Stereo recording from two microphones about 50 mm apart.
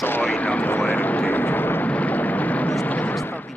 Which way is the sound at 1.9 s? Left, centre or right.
Left.